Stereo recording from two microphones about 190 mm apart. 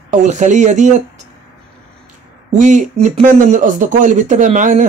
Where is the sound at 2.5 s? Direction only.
40° right (ahead or behind).